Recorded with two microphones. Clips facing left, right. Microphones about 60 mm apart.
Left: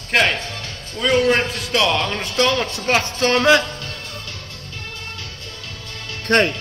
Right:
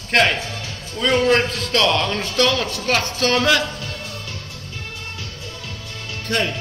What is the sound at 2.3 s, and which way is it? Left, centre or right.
Speech, centre.